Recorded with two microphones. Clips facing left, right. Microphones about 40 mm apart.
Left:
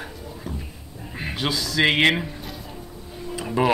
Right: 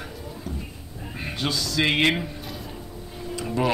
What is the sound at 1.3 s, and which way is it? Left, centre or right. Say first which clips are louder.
Speech: left 1 dB; centre.